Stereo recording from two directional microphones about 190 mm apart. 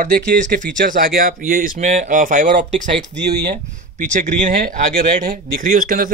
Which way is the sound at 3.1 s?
60° right (ahead or behind).